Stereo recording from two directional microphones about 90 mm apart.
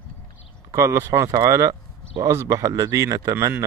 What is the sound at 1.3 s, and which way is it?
Speech, 40° right (ahead or behind).